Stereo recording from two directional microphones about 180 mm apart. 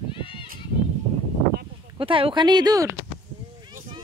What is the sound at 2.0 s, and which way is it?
Speech, 30° right (ahead or behind).